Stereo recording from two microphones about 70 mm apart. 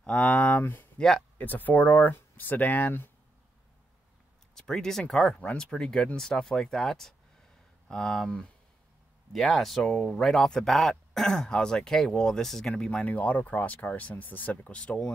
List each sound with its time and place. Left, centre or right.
0.0 s speech: centre
0.9 s speech: centre
1.4 s speech: left
4.6 s speech: centre